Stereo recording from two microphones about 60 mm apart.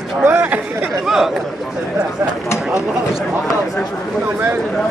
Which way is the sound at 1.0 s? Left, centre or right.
Centre.